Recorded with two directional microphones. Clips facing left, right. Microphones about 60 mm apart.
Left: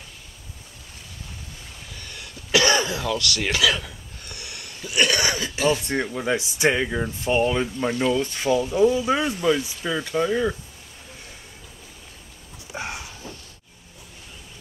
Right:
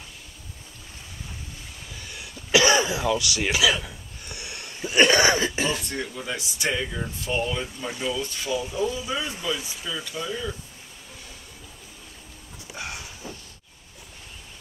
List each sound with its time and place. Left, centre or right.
2.0 s throat clearing: centre; by 5.7 s right
5.7 s speech: left
12.7 s a sound: left